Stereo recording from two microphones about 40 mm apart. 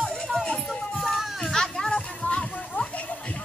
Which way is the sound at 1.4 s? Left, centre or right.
Centre.